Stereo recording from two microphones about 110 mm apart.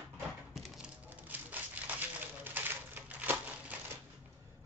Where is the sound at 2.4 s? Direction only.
15° right (ahead or behind).